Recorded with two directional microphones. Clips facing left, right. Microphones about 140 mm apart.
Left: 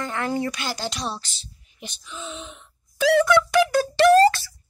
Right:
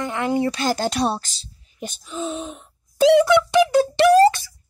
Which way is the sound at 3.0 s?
20° right (ahead or behind).